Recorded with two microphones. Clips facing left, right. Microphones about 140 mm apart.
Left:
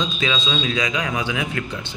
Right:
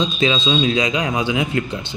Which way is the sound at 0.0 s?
25° right (ahead or behind).